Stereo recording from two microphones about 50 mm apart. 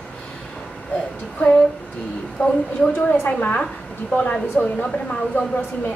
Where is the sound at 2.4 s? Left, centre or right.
Left.